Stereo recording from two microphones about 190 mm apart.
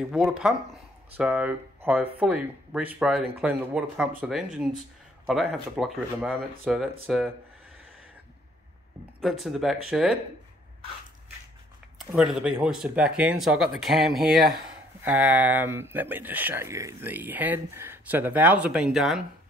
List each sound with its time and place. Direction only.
0.2 s speech: 5° right (ahead or behind)
9.2 s speech: centre (ahead or behind)
12.2 s speech: 5° right (ahead or behind)
14.4 s speech: 55° right (ahead or behind)
15.0 s speech: 5° right (ahead or behind)